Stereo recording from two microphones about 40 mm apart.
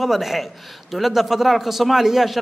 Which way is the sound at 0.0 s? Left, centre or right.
Centre.